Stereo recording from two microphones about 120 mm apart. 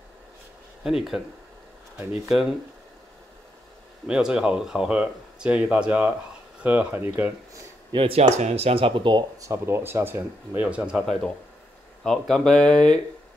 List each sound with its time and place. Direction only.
0.8 s speech: 5° right (ahead or behind)
4.1 s speech: 5° right (ahead or behind)
7.9 s speech: 50° right (ahead or behind)
9.4 s speech: 25° right (ahead or behind)
12.0 s speech: 5° left (ahead or behind)